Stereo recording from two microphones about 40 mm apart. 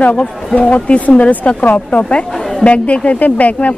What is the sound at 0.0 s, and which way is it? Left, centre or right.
A woman's voice, left.